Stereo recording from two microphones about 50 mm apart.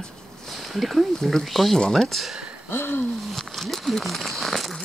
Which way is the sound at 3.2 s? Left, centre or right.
Centre.